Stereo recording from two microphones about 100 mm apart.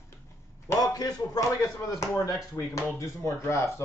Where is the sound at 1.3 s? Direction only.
35° left (ahead or behind).